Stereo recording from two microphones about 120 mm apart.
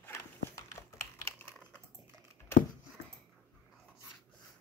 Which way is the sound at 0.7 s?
25° left (ahead or behind).